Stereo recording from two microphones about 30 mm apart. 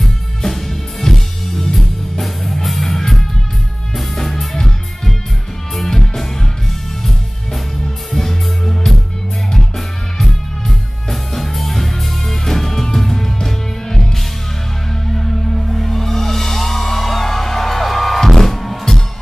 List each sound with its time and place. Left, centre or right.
0.4 s music: centre
8.1 s music: centre
15.1 s music: centre